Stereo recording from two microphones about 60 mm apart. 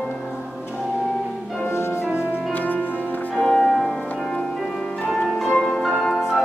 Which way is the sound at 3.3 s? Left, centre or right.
Centre.